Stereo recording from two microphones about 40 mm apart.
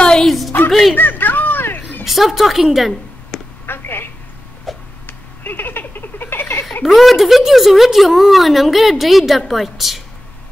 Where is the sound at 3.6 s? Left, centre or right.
Left.